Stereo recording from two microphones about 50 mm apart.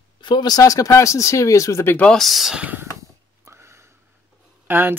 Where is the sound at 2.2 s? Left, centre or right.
Centre.